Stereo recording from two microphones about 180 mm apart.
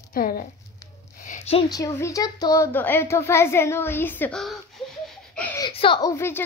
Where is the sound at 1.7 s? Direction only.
15° left (ahead or behind).